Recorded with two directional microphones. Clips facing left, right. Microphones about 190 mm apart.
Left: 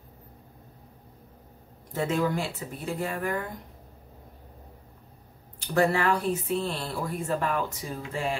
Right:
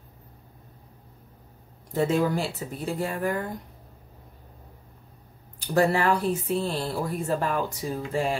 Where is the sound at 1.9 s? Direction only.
35° right (ahead or behind).